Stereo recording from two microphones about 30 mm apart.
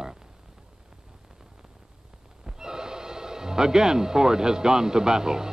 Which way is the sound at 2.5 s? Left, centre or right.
Right.